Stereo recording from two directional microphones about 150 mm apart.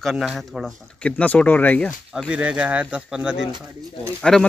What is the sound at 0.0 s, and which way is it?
Speech, centre (ahead or behind).